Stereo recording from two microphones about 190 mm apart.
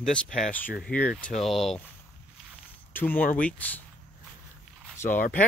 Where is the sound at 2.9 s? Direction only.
10° left (ahead or behind).